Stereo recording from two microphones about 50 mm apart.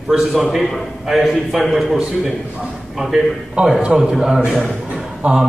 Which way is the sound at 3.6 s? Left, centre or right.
Centre.